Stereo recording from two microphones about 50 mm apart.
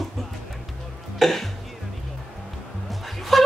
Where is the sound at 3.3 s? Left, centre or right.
Centre.